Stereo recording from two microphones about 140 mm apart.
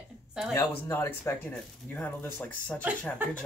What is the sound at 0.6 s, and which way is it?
Speech, 15° left (ahead or behind).